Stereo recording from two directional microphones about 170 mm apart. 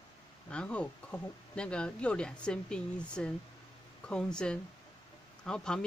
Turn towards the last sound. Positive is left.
turn(degrees=5)  # may be behind; listen again after turning